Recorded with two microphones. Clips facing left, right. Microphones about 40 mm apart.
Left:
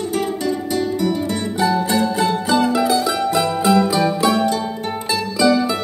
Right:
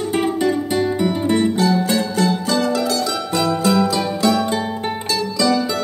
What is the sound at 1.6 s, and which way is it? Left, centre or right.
Music, centre.